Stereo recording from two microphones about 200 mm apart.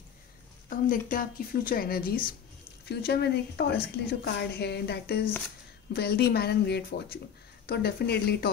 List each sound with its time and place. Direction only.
0.7 s speech: 45° left (ahead or behind)